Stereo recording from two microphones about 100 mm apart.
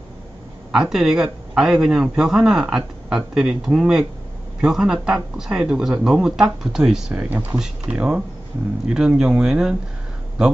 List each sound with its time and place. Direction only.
0.7 s a man's voice: 5° right (ahead or behind)